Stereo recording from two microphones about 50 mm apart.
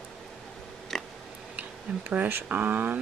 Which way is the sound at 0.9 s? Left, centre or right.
Centre.